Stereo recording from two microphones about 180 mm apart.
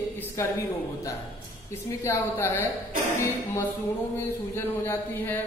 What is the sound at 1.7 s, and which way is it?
Speech, 15° left (ahead or behind).